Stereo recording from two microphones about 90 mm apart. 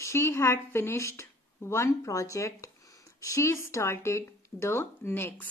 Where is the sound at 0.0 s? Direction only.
30° left (ahead or behind).